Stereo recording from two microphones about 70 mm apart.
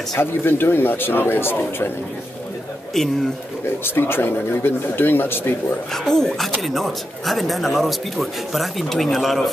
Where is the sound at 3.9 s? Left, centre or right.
Left.